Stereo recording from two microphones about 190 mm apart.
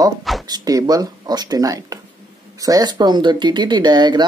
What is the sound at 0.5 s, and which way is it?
Speech, 20° right (ahead or behind).